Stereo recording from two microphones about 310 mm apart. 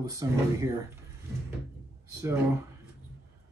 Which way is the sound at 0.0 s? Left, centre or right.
Centre.